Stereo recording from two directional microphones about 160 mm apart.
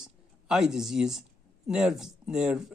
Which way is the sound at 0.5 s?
5° right (ahead or behind).